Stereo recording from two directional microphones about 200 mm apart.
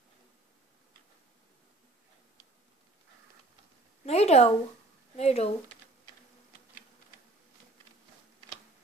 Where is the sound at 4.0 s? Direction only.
30° left (ahead or behind).